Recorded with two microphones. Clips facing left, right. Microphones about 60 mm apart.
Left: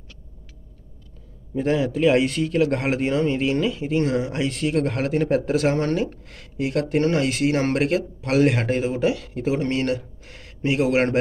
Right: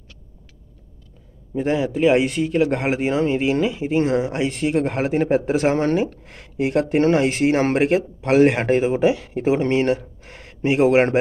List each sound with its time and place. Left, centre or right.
1.5 s a man's voice: centre